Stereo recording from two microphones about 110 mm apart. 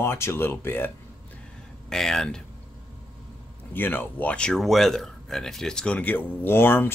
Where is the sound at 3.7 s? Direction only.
20° left (ahead or behind).